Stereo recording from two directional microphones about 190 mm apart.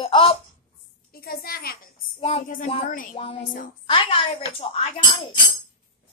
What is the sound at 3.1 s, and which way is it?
A woman's voice, 30° left (ahead or behind).